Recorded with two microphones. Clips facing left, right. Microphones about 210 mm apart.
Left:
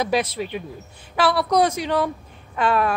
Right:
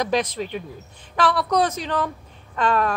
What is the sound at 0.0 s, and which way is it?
A woman's voice, 10° left (ahead or behind).